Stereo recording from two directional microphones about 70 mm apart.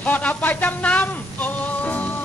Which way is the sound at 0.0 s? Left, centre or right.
Left.